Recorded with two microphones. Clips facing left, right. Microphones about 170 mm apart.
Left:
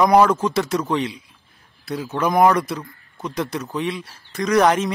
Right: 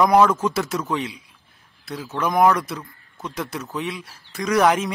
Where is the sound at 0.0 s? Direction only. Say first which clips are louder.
Left 1 dB; centre (ahead or behind).